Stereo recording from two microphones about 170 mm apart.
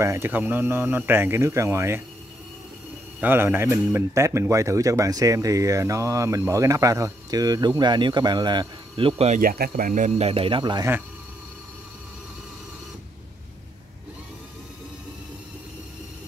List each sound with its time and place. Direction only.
0.0 s speech: 15° right (ahead or behind)
3.2 s speech: 10° right (ahead or behind); by 9.3 s 30° right (ahead or behind)
9.3 s speech: 55° right (ahead or behind); by 10.9 s 25° right (ahead or behind)